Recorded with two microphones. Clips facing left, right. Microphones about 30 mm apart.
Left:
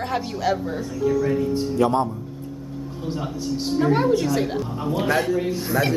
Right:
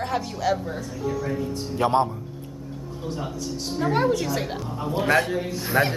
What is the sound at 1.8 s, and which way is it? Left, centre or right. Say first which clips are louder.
Speech: left 1 dB; right.